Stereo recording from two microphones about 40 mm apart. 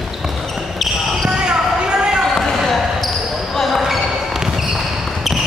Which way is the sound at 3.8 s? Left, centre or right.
Centre.